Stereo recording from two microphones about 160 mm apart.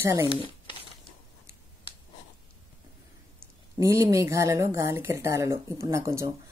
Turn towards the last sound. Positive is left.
turn(degrees=-20)  # may be behind; listen again after turning